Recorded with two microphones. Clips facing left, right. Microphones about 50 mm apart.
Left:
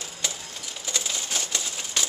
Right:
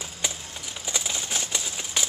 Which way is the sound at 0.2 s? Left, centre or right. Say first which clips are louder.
Right 1 dB; centre.